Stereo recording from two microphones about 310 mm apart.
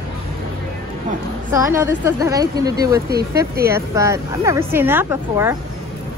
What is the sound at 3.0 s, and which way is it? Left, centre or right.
Speech, right.